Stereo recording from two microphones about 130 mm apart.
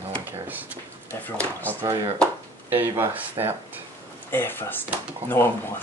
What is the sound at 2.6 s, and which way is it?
Speech, 15° right (ahead or behind).